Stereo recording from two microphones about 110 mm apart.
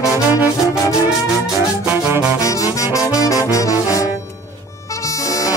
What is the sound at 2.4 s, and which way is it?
Music, 30° left (ahead or behind).